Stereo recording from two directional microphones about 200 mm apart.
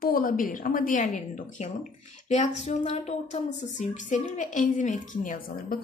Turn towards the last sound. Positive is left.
turn(degrees=40)  # may be behind; listen again after turning